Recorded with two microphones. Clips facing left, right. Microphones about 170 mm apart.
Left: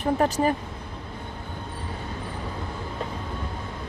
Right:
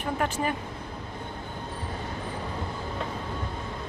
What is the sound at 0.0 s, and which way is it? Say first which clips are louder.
Speech: left 6 dB; 35° left (ahead or behind).